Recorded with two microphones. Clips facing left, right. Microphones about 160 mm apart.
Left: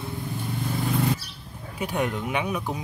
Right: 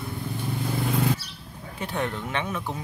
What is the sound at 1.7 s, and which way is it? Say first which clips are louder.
Speech: left 3 dB; 10° left (ahead or behind).